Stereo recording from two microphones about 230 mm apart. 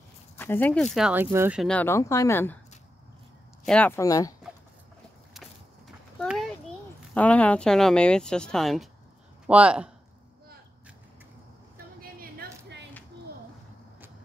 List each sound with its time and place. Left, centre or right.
0.4 s speech: centre
0.9 s speech: centre
3.6 s speech: centre
6.1 s a sound: centre
7.2 s speech: centre
12.0 s a sound: right